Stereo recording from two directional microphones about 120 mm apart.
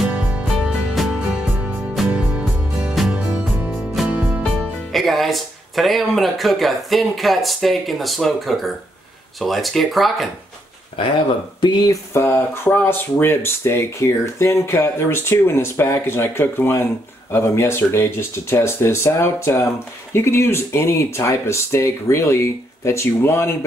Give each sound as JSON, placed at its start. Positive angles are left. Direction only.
{"t": 0.0, "sound": "music", "side_deg": -10}
{"t": 4.4, "sound": "speech", "side_deg": 5}
{"t": 12.1, "sound": "speech", "side_deg": 20}